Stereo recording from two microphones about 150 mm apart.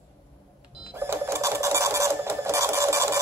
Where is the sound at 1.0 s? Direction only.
15° right (ahead or behind).